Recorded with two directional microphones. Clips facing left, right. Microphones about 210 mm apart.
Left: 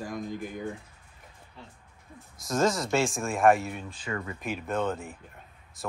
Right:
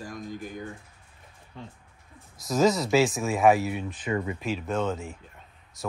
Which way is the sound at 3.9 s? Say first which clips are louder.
Right 6 dB; 20° right (ahead or behind).